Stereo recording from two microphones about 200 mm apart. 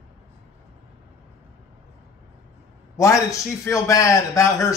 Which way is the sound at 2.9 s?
15° left (ahead or behind).